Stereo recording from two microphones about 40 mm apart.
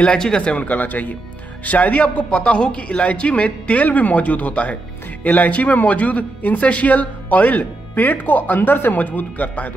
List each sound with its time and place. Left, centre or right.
0.4 s a man's voice: left
8.9 s speech: left